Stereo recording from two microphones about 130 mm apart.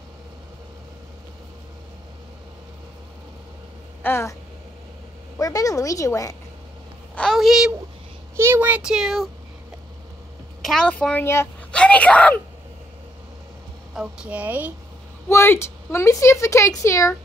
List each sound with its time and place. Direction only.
4.0 s speech: 20° left (ahead or behind)
5.4 s speech: 25° left (ahead or behind)
7.2 s a woman's voice: centre (ahead or behind)
8.4 s speech: 15° right (ahead or behind)
10.6 s a woman's voice: 5° left (ahead or behind)
13.9 s speech: 5° right (ahead or behind)
15.2 s speech: 20° left (ahead or behind)